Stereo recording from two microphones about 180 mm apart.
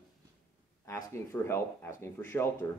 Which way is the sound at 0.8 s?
15° left (ahead or behind).